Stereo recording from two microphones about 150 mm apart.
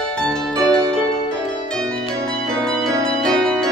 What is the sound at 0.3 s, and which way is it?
Music, 5° left (ahead or behind).